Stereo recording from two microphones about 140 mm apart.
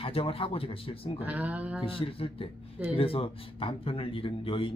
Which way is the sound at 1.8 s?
40° left (ahead or behind).